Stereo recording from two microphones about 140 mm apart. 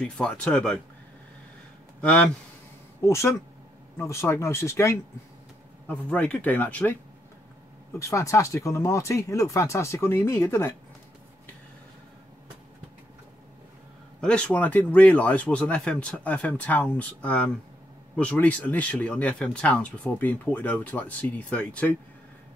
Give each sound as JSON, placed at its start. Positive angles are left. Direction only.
{"t": 0.0, "sound": "speech", "side_deg": 5}
{"t": 2.0, "sound": "speech", "side_deg": 10}
{"t": 3.1, "sound": "speech", "side_deg": 20}
{"t": 5.9, "sound": "speech", "side_deg": 10}
{"t": 8.0, "sound": "speech", "side_deg": 20}
{"t": 14.2, "sound": "speech", "side_deg": 10}